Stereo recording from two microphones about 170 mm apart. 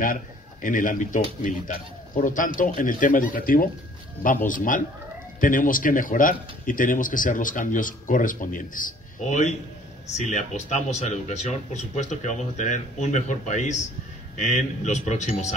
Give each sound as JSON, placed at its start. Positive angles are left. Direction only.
{"t": 0.0, "sound": "speech", "side_deg": 50}